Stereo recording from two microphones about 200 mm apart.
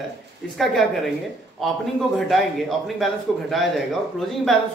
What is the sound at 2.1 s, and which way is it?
Speech, centre (ahead or behind).